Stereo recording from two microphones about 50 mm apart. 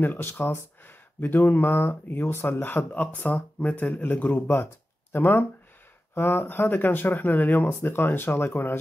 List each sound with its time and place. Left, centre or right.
0.0 s speech: left
0.3 s speech: left
4.5 s speech: left